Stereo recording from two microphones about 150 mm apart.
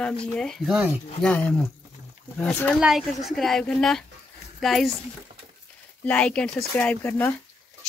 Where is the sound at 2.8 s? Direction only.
5° right (ahead or behind).